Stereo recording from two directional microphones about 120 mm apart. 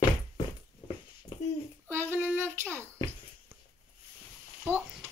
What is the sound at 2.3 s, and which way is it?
Speech, 20° right (ahead or behind).